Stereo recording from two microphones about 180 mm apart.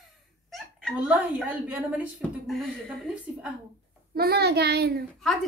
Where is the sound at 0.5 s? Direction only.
Centre (ahead or behind).